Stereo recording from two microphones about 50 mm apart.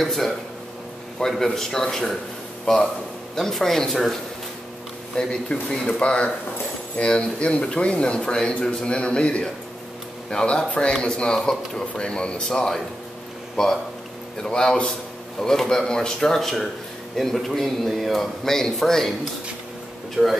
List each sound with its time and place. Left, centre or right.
0.0 s a man's voice: centre
20.2 s a man's voice: centre